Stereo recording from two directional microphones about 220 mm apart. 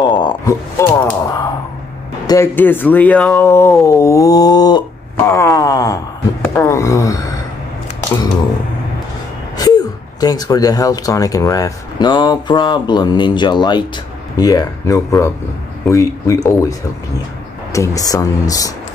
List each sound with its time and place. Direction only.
0.1 s a sound: 20° left (ahead or behind)
2.2 s speech: 15° left (ahead or behind)
9.6 s speech: 15° left (ahead or behind)
17.7 s speech: 15° left (ahead or behind)